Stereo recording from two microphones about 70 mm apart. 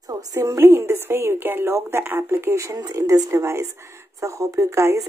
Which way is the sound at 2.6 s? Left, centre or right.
Right.